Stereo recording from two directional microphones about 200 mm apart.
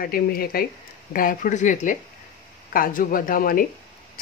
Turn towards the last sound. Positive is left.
turn(degrees=45)  # may be behind; listen again after turning